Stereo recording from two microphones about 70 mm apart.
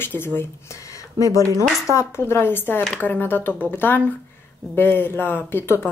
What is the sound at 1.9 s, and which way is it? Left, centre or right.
Speech, left.